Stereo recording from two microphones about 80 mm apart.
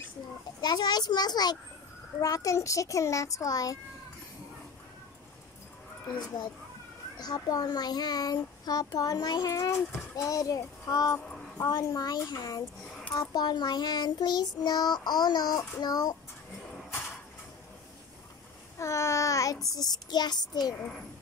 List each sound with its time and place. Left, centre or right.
0.6 s a child's voice: left
2.1 s a child's voice: left
7.2 s a child's voice: left
9.5 s a child's voice: left
18.8 s child singing: left
19.7 s a child's voice: left